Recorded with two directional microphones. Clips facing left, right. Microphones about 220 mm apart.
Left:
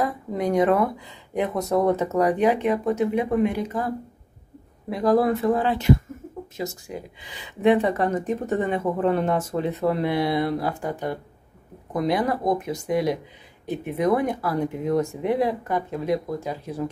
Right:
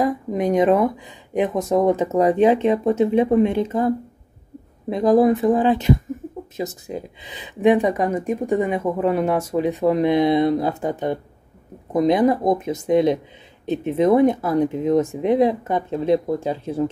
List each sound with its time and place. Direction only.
0.0 s speech: 20° right (ahead or behind)